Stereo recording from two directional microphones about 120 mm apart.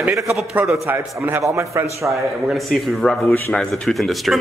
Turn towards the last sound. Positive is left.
turn(degrees=0)  # may be behind; listen again after turning